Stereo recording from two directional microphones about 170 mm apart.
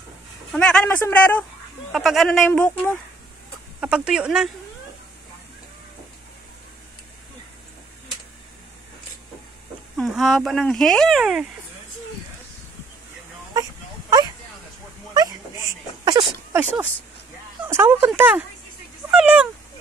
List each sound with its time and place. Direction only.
0.5 s speech: 5° left (ahead or behind)
3.8 s speech: 5° right (ahead or behind)
9.9 s speech: centre (ahead or behind)
15.1 s a sound: 20° right (ahead or behind)
17.6 s speech: 15° right (ahead or behind)